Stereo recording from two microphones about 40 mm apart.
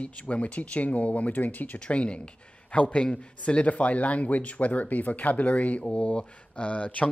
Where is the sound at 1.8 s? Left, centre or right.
Left.